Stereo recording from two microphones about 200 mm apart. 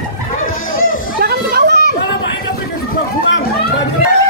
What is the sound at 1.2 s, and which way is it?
Children playing, 55° right (ahead or behind).